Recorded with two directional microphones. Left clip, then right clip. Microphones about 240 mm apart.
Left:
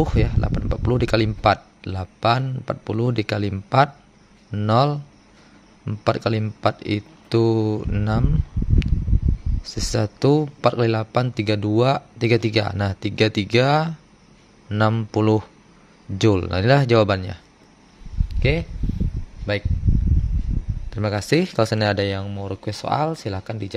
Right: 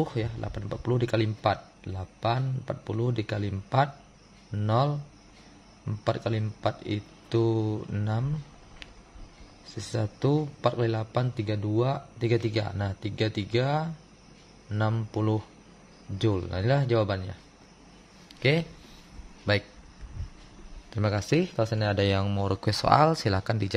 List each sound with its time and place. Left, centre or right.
0.0 s speech: left
9.7 s speech: left
18.3 s speech: centre
20.9 s speech: centre
21.9 s speech: centre